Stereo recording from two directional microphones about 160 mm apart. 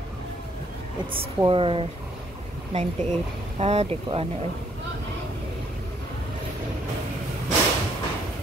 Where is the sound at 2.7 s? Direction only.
45° right (ahead or behind).